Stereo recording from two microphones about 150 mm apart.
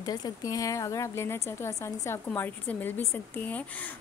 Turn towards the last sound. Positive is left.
turn(degrees=10)  # may be behind; listen again after turning